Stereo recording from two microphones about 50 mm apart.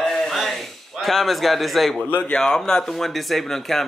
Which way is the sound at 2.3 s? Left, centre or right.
Centre.